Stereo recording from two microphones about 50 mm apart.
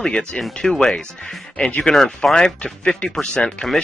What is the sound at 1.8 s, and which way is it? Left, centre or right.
Speech, centre.